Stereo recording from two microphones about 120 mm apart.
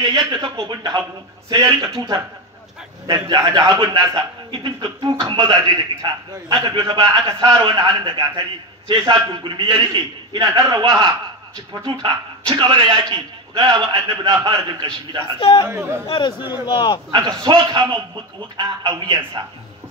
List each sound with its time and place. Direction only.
0.0 s a man's voice: 40° right (ahead or behind)
3.3 s a man's voice: 35° right (ahead or behind)
3.9 s a man's voice: 40° right (ahead or behind)
7.2 s a man's voice: 30° right (ahead or behind)
9.1 s a man's voice: 30° right (ahead or behind)
9.4 s a man's voice: 40° right (ahead or behind)
14.6 s a man's voice: 40° right (ahead or behind)
15.3 s a man's voice: 50° left (ahead or behind)
15.7 s a man's voice: 20° right (ahead or behind)
16.1 s a man's voice: 40° left (ahead or behind)
17.1 s a man's voice: 40° right (ahead or behind)